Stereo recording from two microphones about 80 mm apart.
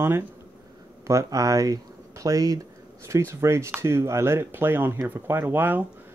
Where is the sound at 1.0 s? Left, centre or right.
Right.